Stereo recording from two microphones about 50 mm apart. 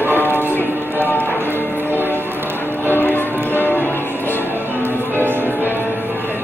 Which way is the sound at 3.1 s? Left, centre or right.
Left.